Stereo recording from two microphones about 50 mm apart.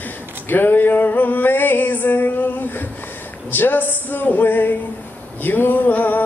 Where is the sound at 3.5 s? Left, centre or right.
Left.